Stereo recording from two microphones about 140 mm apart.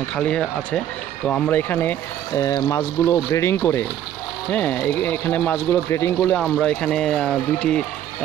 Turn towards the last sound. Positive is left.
turn(degrees=5)  # may be behind; listen again after turning